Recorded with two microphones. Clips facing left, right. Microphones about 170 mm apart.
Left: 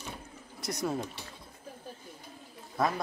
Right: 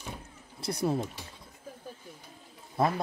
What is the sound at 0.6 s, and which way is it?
Speech, 30° right (ahead or behind).